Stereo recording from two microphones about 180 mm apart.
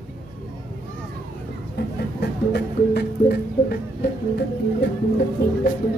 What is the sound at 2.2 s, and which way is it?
Music, 65° left (ahead or behind).